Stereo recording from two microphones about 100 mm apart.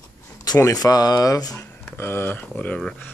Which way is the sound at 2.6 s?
5° left (ahead or behind).